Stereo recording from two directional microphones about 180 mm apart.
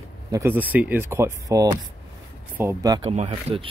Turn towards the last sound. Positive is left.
turn(degrees=-35)  # may be behind; listen again after turning